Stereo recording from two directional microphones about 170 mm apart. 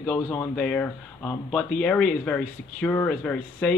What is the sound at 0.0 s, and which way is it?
Speech, 15° left (ahead or behind).